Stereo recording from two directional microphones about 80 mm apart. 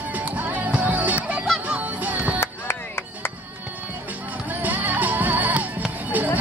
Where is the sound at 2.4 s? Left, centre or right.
Left.